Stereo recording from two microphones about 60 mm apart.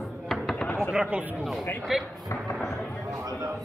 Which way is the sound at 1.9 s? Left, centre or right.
Centre.